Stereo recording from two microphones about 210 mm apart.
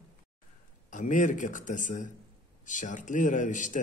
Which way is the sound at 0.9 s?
35° left (ahead or behind).